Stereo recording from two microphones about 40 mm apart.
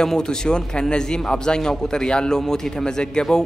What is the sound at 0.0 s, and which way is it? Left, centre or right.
A man's voice, centre.